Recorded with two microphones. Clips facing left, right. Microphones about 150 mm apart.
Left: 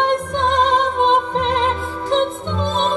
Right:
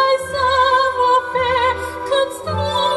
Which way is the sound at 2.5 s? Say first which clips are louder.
Right 1 dB; 90° right.